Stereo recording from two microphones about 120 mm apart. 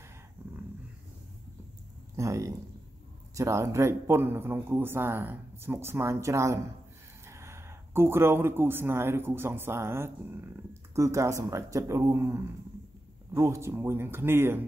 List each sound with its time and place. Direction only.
2.1 s speech: 25° right (ahead or behind)